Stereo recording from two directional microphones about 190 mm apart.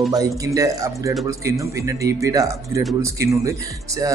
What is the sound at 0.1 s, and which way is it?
Speech, 20° right (ahead or behind).